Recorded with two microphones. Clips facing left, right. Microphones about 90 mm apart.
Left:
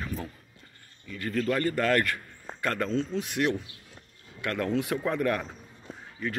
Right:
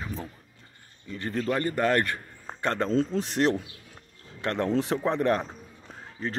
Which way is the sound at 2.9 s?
40° right (ahead or behind).